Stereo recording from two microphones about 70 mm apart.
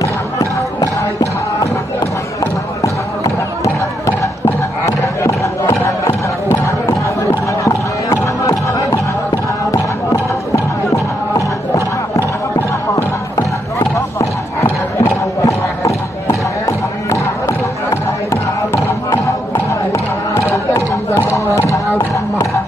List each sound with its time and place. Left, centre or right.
0.7 s music: left
2.8 s a sound: left
4.8 s music: left
6.0 s music: left
7.6 s music: left
13.9 s a sound: left
15.4 s music: left
20.5 s chatter: left
21.3 s a sound: left